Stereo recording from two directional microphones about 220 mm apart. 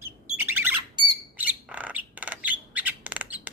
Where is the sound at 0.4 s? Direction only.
10° right (ahead or behind).